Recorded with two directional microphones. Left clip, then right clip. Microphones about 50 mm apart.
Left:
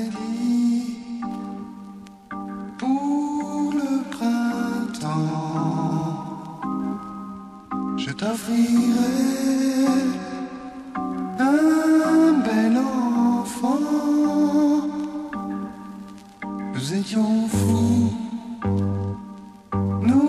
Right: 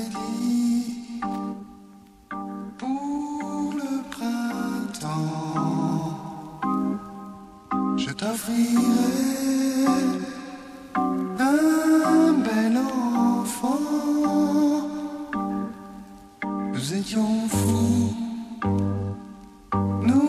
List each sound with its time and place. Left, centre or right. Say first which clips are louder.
0.0 s music: left 1 dB; right
2.8 s music: left 6 dB; right
3.7 s music: left 5 dB; centre
4.9 s music: left 3 dB; right
5.3 s music: left 1 dB; right
6.6 s music: right 3 dB; centre
7.7 s music: right 2 dB; right
8.3 s mantra: left 4 dB; centre
9.6 s music: even; right
10.9 s music: right 4 dB; centre
13.6 s music: left 3 dB; right
16.4 s music: right 1 dB; right
19.9 s music: left 3 dB; right